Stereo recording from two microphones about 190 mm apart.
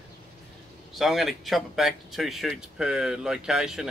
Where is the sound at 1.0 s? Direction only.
Centre (ahead or behind).